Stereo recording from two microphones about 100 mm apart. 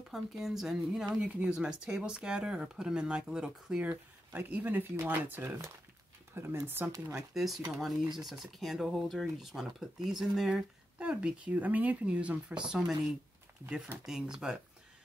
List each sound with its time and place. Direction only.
0.1 s speech: centre (ahead or behind); by 6.6 s 25° right (ahead or behind)
7.1 s speech: 5° right (ahead or behind)